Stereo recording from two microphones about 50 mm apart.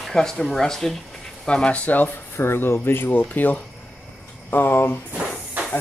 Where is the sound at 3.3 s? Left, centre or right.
Left.